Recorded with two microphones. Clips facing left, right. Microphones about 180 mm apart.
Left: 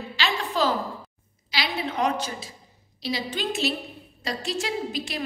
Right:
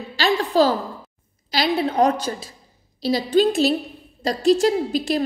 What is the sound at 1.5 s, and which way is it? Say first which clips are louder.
A woman's voice: right 8 dB; 40° right (ahead or behind).